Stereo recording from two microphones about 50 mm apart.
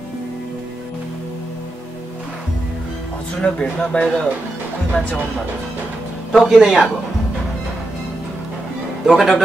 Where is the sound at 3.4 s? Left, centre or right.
Left.